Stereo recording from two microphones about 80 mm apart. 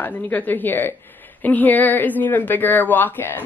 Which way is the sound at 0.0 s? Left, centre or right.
Left.